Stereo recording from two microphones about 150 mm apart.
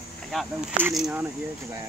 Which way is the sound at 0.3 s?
5° right (ahead or behind).